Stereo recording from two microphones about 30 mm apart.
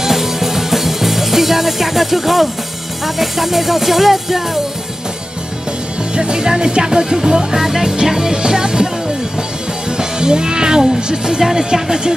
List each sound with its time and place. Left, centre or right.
0.0 s music: centre
6.1 s speech: right
6.9 s music: right
11.0 s speech: right